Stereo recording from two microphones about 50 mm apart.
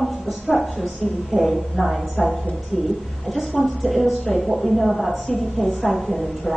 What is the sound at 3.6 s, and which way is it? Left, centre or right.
Speech, centre.